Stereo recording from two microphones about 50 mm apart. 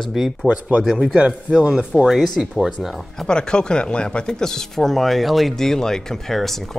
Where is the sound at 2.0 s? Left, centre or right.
Centre.